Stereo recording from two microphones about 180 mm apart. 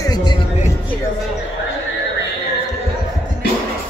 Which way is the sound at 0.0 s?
25° left (ahead or behind).